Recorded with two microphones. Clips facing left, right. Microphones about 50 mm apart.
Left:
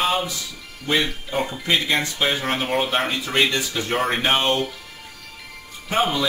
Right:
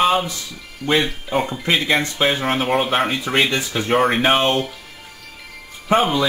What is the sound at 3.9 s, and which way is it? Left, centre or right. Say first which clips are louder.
Speech: right 5 dB; centre.